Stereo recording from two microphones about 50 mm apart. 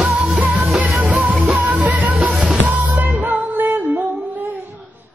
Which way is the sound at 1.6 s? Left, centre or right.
Right.